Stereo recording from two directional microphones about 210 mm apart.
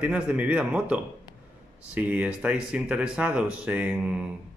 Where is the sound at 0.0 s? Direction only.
5° right (ahead or behind).